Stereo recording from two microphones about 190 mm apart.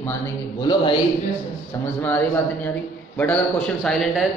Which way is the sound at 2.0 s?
10° left (ahead or behind).